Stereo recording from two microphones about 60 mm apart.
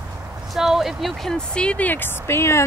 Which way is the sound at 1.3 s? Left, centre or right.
Centre.